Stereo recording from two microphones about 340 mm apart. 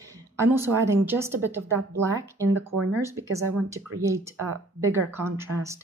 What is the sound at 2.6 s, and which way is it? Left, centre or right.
Speech, right.